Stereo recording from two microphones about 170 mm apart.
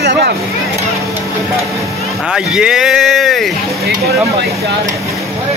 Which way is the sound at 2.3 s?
5° right (ahead or behind).